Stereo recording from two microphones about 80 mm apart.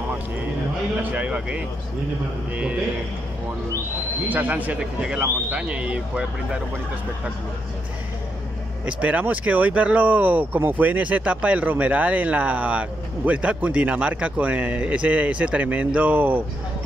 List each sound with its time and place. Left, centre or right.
1.1 s speech: centre
4.3 s speech: right
8.8 s speech: centre